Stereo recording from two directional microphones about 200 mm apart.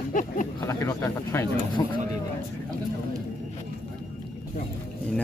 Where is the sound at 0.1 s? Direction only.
40° left (ahead or behind).